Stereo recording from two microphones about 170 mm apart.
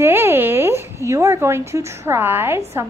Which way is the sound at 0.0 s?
15° right (ahead or behind).